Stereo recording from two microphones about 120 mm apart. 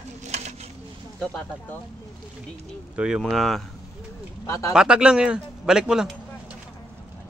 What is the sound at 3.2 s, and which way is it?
Speech, centre (ahead or behind).